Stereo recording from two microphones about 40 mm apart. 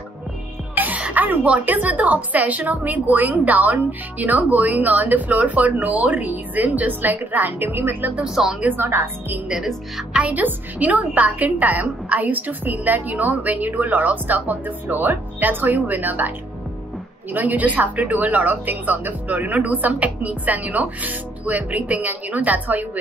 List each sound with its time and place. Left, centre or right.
0.7 s music: right
1.7 s a woman's voice: right
7.5 s speech: right
10.2 s a woman's voice: right